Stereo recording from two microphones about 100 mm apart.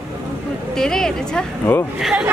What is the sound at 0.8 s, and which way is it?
Speech, 5° left (ahead or behind).